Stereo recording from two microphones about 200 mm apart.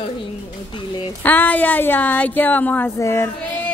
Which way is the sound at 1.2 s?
10° left (ahead or behind).